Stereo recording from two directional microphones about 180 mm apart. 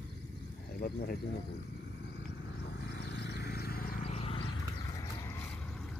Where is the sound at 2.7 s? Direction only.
65° left (ahead or behind).